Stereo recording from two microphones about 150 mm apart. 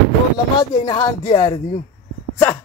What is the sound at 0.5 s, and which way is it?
Speech, 30° left (ahead or behind).